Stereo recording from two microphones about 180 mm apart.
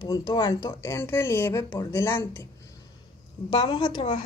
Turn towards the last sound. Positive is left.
turn(degrees=25)  # may be behind; listen again after turning